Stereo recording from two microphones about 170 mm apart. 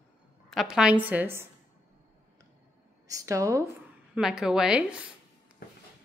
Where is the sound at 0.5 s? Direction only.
5° right (ahead or behind).